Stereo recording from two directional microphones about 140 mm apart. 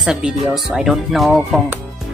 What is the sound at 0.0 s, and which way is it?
A woman's voice, 5° right (ahead or behind).